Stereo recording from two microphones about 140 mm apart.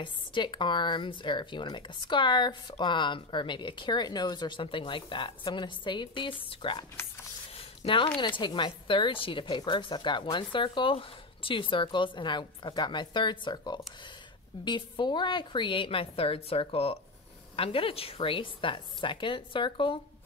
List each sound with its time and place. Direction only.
0.0 s speech: 35° left (ahead or behind)
7.5 s a sound: 40° left (ahead or behind)
8.2 s speech: 35° left (ahead or behind)